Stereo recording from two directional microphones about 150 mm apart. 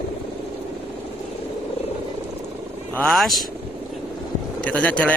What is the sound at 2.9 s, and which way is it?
Speech, 5° left (ahead or behind).